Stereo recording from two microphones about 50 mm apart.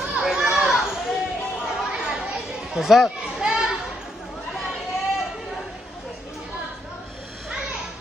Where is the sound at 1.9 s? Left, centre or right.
Centre.